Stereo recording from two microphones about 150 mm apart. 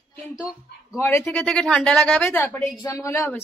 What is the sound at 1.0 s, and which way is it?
Speech, 15° left (ahead or behind).